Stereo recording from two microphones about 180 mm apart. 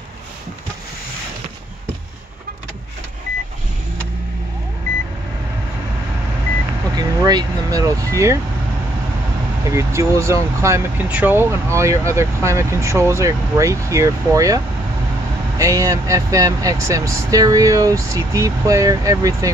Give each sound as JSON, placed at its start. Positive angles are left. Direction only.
{"t": 7.0, "sound": "vehicle", "side_deg": -20}
{"t": 9.7, "sound": "speech", "side_deg": -15}